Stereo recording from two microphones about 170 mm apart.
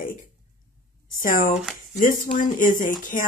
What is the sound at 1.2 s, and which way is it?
Speech, 55° left (ahead or behind).